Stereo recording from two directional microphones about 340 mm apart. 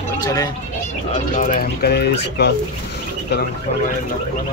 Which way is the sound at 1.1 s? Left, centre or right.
Left.